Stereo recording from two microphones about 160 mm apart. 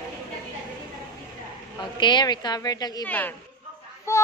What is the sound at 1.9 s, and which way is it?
A woman's voice, 30° left (ahead or behind).